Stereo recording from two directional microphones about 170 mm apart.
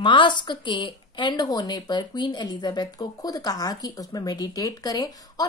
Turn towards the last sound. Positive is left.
turn(degrees=20)  # may be behind; listen again after turning